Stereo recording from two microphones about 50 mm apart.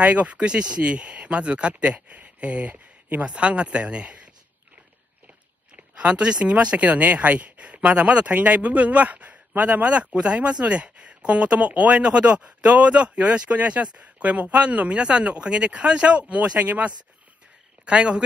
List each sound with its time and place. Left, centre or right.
0.0 s speech: right
2.7 s a sound: right
3.3 s speech: right
5.9 s speech: right